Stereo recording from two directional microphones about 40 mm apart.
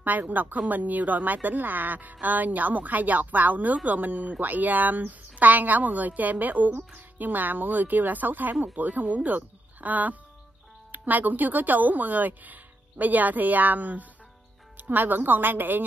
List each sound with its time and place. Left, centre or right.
0.0 s a woman's voice: right